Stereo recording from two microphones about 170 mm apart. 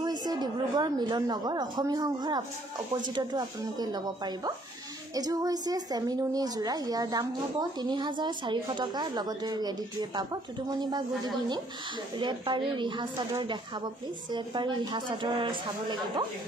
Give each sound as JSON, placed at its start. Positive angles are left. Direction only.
{"t": 0.0, "sound": "a woman's voice", "side_deg": -25}